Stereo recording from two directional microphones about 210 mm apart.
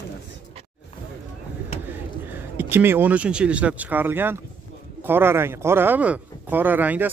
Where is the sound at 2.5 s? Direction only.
10° right (ahead or behind).